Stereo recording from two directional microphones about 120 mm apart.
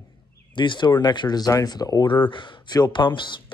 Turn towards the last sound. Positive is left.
turn(degrees=40)  # may be behind; listen again after turning